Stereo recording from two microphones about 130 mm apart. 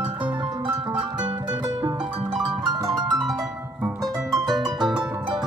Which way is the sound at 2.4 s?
30° right (ahead or behind).